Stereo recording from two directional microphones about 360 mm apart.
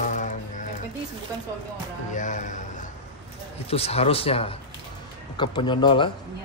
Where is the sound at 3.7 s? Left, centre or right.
Centre.